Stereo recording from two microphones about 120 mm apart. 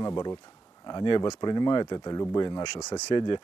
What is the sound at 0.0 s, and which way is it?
Speech, 35° left (ahead or behind).